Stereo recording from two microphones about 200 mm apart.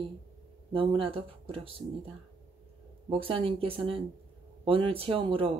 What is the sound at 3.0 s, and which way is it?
Speech, 25° right (ahead or behind).